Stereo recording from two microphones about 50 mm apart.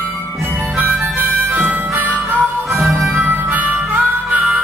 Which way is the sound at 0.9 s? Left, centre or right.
Right.